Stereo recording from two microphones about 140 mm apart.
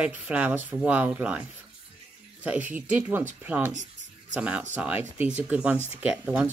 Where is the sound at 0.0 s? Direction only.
10° right (ahead or behind).